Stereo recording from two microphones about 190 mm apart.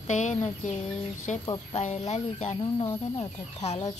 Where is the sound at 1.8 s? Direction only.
35° left (ahead or behind).